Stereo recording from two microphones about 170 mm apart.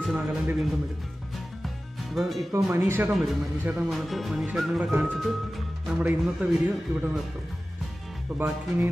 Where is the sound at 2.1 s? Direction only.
Centre (ahead or behind).